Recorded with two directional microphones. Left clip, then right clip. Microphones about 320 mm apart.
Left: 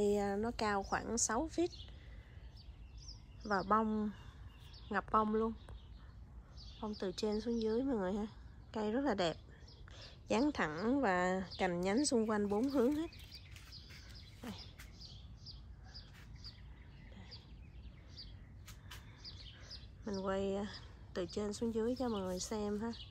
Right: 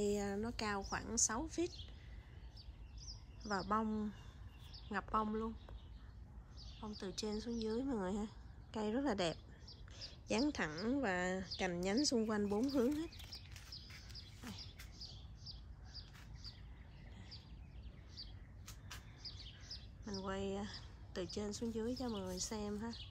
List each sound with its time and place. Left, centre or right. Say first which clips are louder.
0.0 s a woman's voice: left 5 dB; centre
3.4 s a woman's voice: left 5 dB; centre
6.8 s a woman's voice: left 6 dB; centre
14.4 s bird: left 4 dB; centre
15.5 s a sound: right 1 dB; centre
19.2 s bird: right 1 dB; centre
20.2 s a woman's voice: left 5 dB; centre